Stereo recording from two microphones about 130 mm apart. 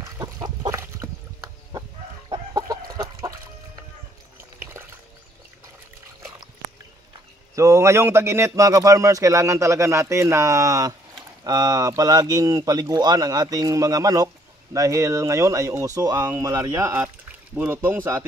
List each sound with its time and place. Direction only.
0.0 s chicken: 25° right (ahead or behind)
7.5 s speech: 20° right (ahead or behind)